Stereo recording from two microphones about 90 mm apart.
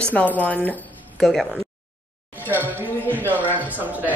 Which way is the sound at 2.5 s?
20° right (ahead or behind).